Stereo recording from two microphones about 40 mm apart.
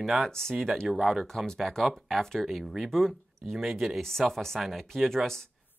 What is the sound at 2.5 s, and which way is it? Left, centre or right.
Speech, centre.